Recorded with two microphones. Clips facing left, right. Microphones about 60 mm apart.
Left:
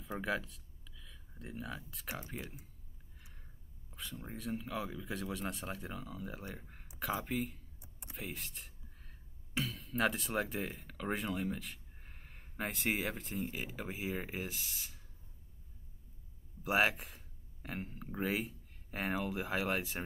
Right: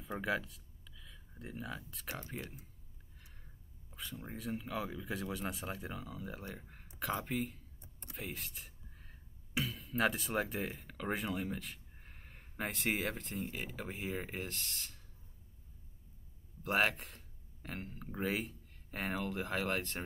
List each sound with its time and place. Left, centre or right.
0.0 s speech: centre
3.9 s speech: centre
16.6 s speech: centre